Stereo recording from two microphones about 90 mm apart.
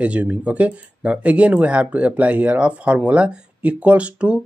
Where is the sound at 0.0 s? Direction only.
15° right (ahead or behind).